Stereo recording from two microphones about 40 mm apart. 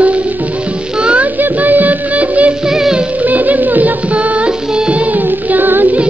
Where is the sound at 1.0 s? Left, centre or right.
Right.